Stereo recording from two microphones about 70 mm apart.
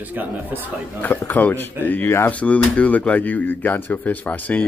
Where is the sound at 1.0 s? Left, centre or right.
Left.